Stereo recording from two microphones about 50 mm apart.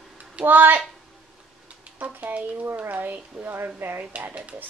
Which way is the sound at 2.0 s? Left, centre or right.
Right.